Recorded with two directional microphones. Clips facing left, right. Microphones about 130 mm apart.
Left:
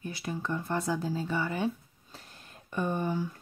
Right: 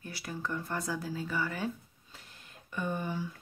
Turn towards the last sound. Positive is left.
turn(degrees=45)  # may be behind; listen again after turning